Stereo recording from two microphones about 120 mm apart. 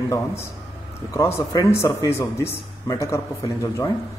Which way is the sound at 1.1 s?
25° left (ahead or behind).